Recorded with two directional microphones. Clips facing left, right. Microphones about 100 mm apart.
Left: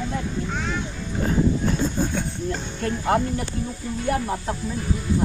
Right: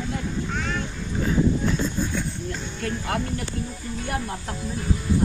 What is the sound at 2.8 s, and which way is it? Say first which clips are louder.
Speech: left 6 dB; 30° left (ahead or behind).